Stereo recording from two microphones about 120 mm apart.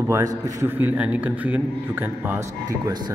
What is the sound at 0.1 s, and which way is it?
Speech, 25° right (ahead or behind).